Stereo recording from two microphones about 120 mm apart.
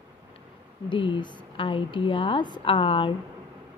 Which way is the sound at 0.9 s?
40° left (ahead or behind).